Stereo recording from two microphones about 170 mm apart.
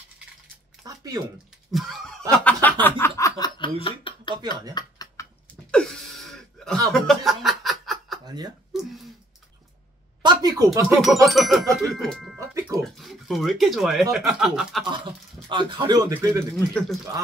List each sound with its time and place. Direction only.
0.8 s a sound: 20° right (ahead or behind)
1.7 s snicker: centre (ahead or behind); by 3.7 s 25° left (ahead or behind)
3.8 s speech: 30° left (ahead or behind)
4.7 s a sound: 20° left (ahead or behind)
5.7 s a sound: 5° left (ahead or behind)
6.9 s music: centre (ahead or behind)
10.2 s speech: 25° right (ahead or behind)
11.0 s speech: centre (ahead or behind)
12.4 s music: 20° right (ahead or behind)
12.8 s speech: centre (ahead or behind)
15.4 s speech: 30° right (ahead or behind)
16.7 s speech: centre (ahead or behind)